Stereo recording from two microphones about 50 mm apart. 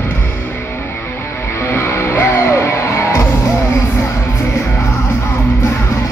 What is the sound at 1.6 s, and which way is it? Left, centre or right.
Music, left.